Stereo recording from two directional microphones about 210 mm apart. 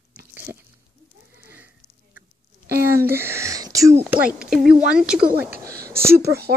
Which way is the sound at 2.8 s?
10° right (ahead or behind).